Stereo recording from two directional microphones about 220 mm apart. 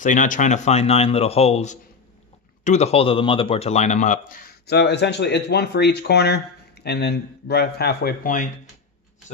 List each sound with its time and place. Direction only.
0.0 s speech: 35° left (ahead or behind)